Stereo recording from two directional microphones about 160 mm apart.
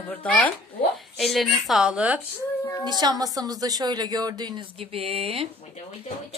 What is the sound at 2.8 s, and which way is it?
A woman's voice, 25° right (ahead or behind).